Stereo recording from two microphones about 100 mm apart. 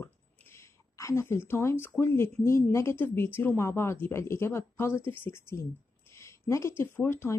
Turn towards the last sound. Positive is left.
turn(degrees=25)  # may be behind; listen again after turning